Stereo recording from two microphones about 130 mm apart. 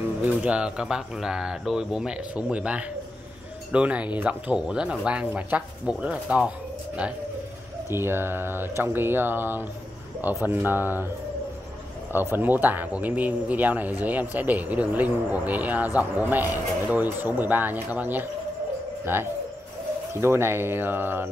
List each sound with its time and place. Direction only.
0.2 s speech: 10° right (ahead or behind)
7.9 s speech: 20° right (ahead or behind)
12.1 s speech: 15° right (ahead or behind)
20.2 s speech: 20° right (ahead or behind)